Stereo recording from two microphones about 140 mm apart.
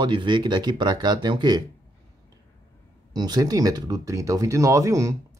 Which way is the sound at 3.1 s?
30° right (ahead or behind).